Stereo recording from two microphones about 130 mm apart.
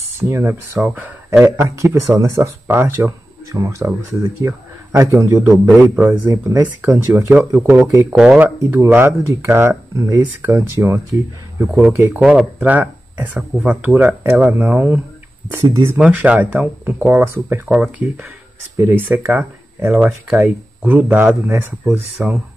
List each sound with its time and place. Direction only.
0.2 s speech: 15° right (ahead or behind)
6.5 s speech: 25° right (ahead or behind)
7.8 s speech: 25° right (ahead or behind)
8.1 s speech: 5° right (ahead or behind)
13.4 s speech: 5° right (ahead or behind)
13.8 s speech: 15° right (ahead or behind)
16.0 s speech: 10° right (ahead or behind)